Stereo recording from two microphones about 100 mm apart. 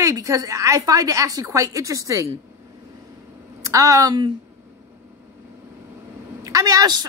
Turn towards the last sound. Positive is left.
turn(degrees=-40)  # may be behind; listen again after turning